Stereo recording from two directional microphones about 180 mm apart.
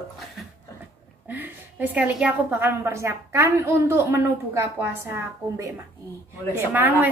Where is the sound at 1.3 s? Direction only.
10° right (ahead or behind).